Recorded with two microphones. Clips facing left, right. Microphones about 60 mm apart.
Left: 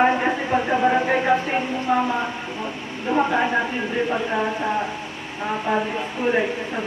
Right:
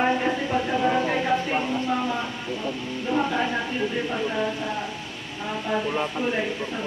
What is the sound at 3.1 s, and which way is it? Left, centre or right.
Speech, left.